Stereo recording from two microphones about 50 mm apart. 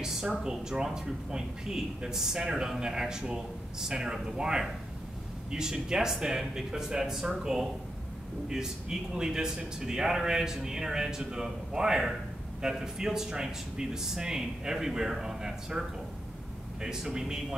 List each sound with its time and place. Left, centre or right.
0.0 s speech: centre
16.8 s speech: centre